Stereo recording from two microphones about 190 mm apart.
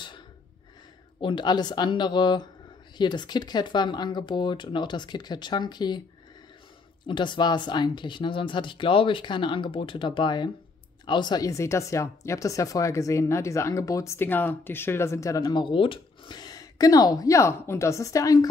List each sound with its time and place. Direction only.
1.2 s speech: 25° left (ahead or behind)
7.1 s speech: 25° left (ahead or behind)